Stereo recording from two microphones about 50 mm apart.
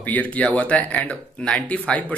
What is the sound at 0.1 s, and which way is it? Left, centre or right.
Speech, left.